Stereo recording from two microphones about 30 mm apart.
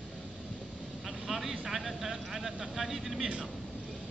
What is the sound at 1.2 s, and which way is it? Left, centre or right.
Vehicle, centre.